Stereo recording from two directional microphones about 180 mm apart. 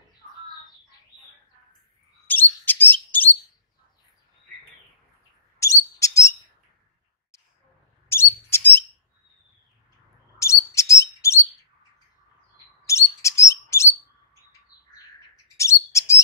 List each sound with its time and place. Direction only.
2.2 s chirp: 10° left (ahead or behind)
5.6 s bird: 15° left (ahead or behind)
8.1 s bird: 15° left (ahead or behind)
10.4 s bird: 15° left (ahead or behind)
12.8 s bird: 15° left (ahead or behind)
14.7 s bird: 55° left (ahead or behind)
15.5 s bird: 15° left (ahead or behind)